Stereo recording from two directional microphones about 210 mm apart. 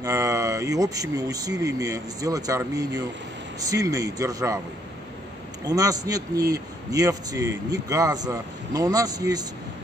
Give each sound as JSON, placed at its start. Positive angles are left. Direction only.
{"t": 0.0, "sound": "a man's voice", "side_deg": -15}
{"t": 5.7, "sound": "a man's voice", "side_deg": -15}